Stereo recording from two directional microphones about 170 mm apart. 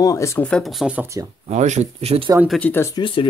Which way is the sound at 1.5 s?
40° right (ahead or behind).